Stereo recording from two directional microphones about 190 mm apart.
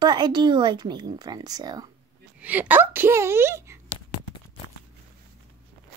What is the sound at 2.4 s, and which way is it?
Speech, 10° right (ahead or behind).